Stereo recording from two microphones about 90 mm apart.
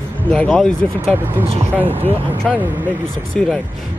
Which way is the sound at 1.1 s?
25° right (ahead or behind).